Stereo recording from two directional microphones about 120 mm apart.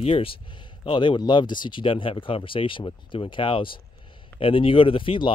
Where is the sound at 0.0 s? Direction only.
50° left (ahead or behind).